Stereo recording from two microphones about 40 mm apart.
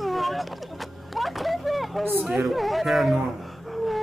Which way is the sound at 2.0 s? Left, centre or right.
Right.